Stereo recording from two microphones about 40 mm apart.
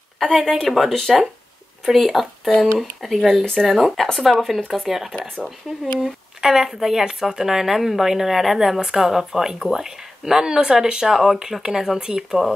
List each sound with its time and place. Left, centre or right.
0.2 s speech: centre
0.9 s speech: centre
1.9 s speech: centre